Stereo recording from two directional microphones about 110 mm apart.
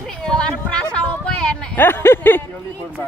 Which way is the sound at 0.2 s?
10° left (ahead or behind).